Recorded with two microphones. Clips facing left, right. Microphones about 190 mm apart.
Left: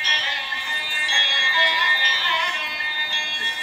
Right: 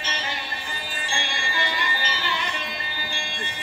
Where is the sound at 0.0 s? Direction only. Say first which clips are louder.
Right 2 dB; 50° right (ahead or behind).